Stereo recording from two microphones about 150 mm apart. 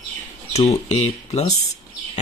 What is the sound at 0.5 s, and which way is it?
Speech, 50° left (ahead or behind).